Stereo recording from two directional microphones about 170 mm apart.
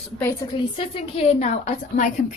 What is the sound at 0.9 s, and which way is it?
A woman's voice, 35° left (ahead or behind).